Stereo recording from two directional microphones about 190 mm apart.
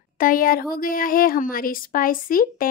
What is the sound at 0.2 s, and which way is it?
A woman's voice, 45° left (ahead or behind).